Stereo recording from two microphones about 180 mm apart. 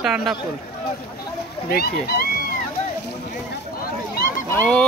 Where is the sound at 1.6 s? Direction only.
60° left (ahead or behind).